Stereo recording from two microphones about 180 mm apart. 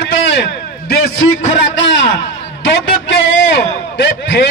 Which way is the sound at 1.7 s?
85° left.